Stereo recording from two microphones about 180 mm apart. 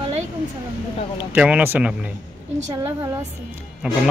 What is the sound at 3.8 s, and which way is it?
Speech, 5° right (ahead or behind).